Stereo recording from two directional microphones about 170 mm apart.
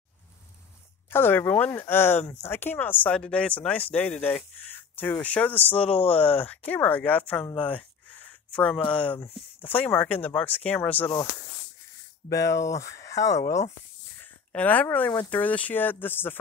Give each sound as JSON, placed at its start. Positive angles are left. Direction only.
{"t": 1.1, "sound": "speech", "side_deg": 15}
{"t": 5.9, "sound": "speech", "side_deg": 35}
{"t": 6.1, "sound": "speech", "side_deg": 10}
{"t": 8.5, "sound": "speech", "side_deg": 5}
{"t": 12.3, "sound": "speech", "side_deg": 20}